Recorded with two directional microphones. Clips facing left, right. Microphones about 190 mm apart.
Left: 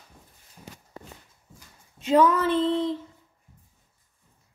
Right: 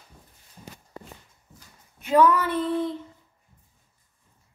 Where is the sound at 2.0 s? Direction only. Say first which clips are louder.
Even; 25° left (ahead or behind).